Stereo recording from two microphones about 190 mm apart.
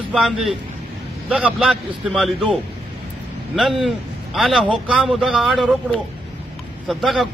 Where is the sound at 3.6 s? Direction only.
Centre (ahead or behind).